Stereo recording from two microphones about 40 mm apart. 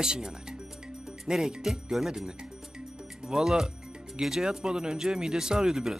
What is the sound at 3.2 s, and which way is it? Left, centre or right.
Speech, centre.